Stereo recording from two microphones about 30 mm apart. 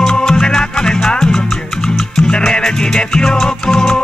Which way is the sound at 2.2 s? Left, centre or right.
Left.